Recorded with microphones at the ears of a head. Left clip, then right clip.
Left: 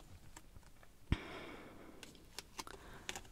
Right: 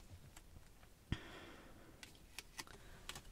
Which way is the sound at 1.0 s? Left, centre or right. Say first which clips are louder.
Left 6 dB; left.